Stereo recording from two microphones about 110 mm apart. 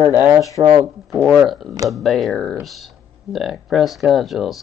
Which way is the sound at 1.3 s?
Centre (ahead or behind).